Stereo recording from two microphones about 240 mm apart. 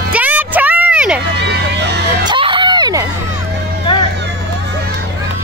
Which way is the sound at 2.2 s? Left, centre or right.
Centre.